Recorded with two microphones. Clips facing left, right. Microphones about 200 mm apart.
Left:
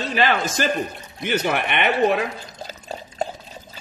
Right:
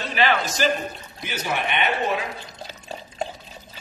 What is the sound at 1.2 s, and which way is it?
Speech, 65° left (ahead or behind).